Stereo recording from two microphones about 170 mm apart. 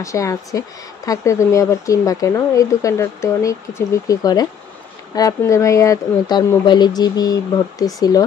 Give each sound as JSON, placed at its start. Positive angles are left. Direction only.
{"t": 0.0, "sound": "speech", "side_deg": 20}